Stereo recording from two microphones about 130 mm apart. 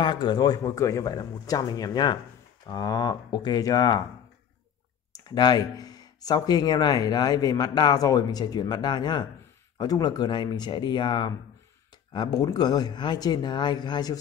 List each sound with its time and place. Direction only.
0.0 s speech: 35° left (ahead or behind)
5.1 s speech: 30° left (ahead or behind)